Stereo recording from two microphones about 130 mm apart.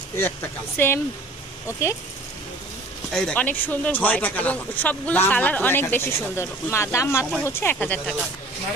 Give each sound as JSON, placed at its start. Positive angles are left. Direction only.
{"t": 0.7, "sound": "speech", "side_deg": 15}
{"t": 3.1, "sound": "speech", "side_deg": 5}